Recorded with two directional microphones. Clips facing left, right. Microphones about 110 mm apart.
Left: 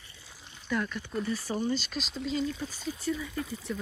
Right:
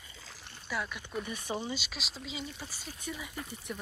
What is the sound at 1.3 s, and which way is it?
Speech, 20° right (ahead or behind).